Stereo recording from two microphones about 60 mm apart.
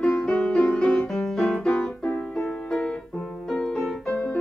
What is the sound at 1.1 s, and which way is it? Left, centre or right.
Music, centre.